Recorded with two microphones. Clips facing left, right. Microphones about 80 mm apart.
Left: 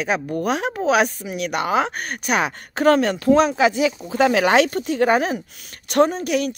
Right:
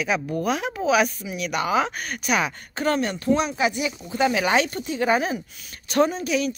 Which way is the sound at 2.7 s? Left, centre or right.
Left.